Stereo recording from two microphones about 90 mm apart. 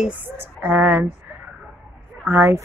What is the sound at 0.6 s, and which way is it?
Speech, 20° right (ahead or behind).